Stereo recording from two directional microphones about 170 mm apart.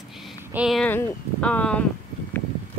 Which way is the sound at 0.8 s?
10° left (ahead or behind).